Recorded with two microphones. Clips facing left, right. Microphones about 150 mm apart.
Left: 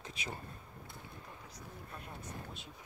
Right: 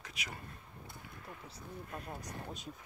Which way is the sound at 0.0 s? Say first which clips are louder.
Left 3 dB; 30° left (ahead or behind).